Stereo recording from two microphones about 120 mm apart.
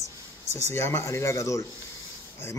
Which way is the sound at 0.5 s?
20° left (ahead or behind).